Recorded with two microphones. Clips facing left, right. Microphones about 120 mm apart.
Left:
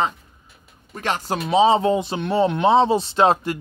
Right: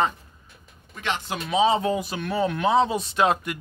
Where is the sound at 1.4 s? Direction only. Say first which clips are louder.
Left 5 dB; 30° left (ahead or behind).